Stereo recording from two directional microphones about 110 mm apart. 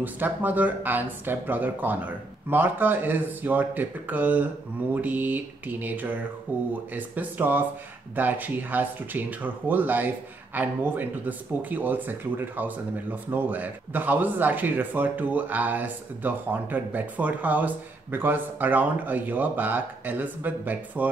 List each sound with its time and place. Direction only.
0.0 s speech: 15° right (ahead or behind)